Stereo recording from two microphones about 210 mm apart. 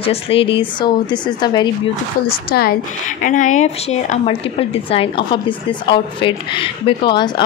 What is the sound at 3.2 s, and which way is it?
A woman's voice, 40° left (ahead or behind).